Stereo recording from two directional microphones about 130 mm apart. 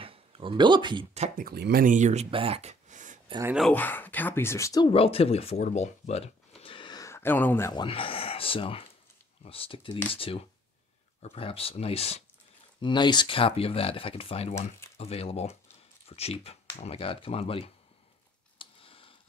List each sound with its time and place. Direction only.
0.0 s a sound: 45° right (ahead or behind)
1.1 s speech: 75° right (ahead or behind)
2.3 s a sound: 50° right (ahead or behind); by 3.2 s 75° right (ahead or behind)
3.7 s speech: 15° left (ahead or behind)
4.8 s speech: 45° left (ahead or behind)
7.1 s speech: 15° left (ahead or behind)
7.7 s speech: 40° left (ahead or behind)
12.8 s speech: 35° left (ahead or behind)
18.6 s a sound: 45° left (ahead or behind)